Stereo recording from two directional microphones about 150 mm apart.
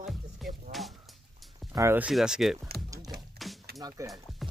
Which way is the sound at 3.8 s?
25° right (ahead or behind).